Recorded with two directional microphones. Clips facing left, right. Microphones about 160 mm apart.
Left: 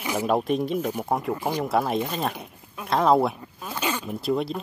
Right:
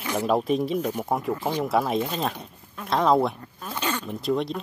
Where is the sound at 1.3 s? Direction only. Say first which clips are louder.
Even; 15° left (ahead or behind).